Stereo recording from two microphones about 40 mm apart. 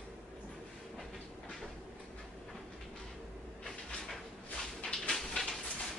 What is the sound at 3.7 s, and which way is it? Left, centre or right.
Sliding door, centre.